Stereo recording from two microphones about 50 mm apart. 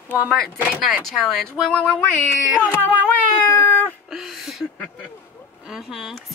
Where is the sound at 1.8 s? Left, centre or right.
Left.